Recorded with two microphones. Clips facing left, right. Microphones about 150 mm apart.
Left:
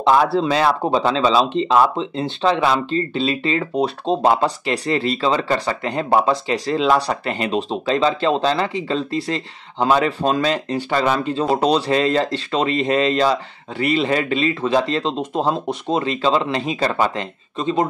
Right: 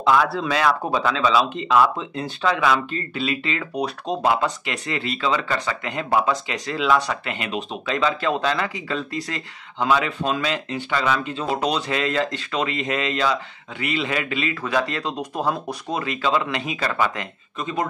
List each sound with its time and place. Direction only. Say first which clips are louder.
0.0 s speech: left 4 dB; 30° left (ahead or behind)